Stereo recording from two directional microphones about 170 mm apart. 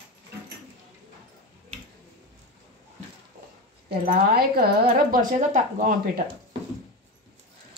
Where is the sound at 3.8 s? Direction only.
60° right (ahead or behind).